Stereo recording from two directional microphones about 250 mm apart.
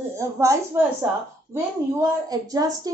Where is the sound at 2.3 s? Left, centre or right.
Centre.